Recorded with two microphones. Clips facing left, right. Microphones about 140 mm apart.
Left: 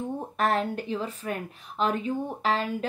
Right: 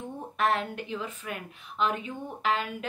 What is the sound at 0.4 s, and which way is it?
A woman's voice, 40° left (ahead or behind).